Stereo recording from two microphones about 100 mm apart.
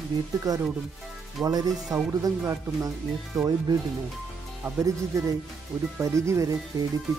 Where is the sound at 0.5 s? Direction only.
40° right (ahead or behind).